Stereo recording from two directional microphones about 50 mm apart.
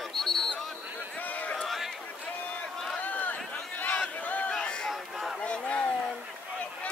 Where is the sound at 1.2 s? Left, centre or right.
Left.